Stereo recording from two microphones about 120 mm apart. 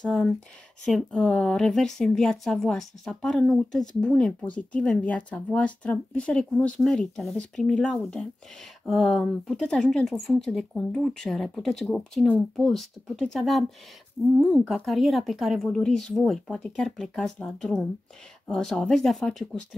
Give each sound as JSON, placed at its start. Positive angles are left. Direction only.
{"t": 0.0, "sound": "speech", "side_deg": 5}
{"t": 14.7, "sound": "speech", "side_deg": 0}